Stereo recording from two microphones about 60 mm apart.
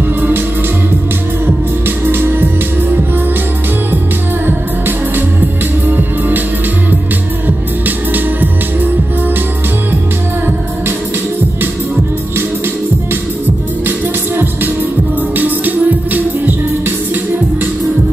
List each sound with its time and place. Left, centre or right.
2.0 s music: right
4.5 s music: right
7.4 s music: right
13.8 s music: right